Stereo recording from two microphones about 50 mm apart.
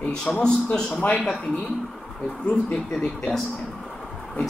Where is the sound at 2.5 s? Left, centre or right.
Left.